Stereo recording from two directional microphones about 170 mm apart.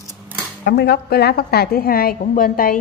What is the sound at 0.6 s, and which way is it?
A woman's voice, 75° left (ahead or behind).